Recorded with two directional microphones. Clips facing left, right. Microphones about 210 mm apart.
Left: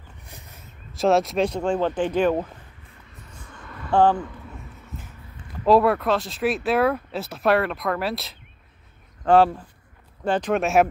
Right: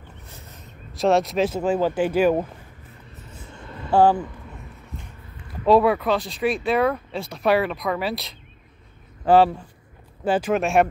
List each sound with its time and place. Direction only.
0.3 s a sound: 15° left (ahead or behind)
0.9 s speech: centre (ahead or behind)
3.4 s vehicle: 25° right (ahead or behind)
3.9 s speech: 10° right (ahead or behind)
5.7 s speech: centre (ahead or behind)